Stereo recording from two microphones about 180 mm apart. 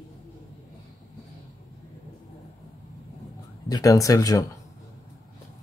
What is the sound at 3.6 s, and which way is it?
Speech, 20° left (ahead or behind).